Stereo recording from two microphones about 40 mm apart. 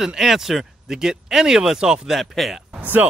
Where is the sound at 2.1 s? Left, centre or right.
Centre.